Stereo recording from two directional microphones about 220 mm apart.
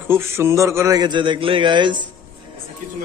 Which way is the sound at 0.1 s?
10° right (ahead or behind).